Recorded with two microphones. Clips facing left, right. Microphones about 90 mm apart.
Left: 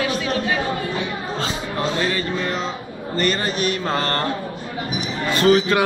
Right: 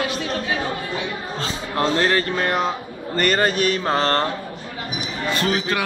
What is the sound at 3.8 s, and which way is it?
Speech, 25° right (ahead or behind).